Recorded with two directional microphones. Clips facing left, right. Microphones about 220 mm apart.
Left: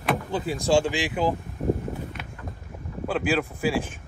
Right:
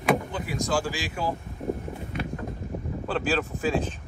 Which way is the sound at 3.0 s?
10° left (ahead or behind).